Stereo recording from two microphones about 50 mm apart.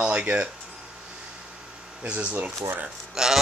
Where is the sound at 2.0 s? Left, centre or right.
Right.